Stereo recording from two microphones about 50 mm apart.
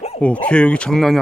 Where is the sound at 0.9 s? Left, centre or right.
Centre.